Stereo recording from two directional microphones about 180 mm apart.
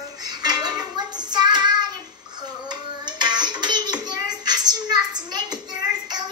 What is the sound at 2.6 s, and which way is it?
Music, 25° right (ahead or behind).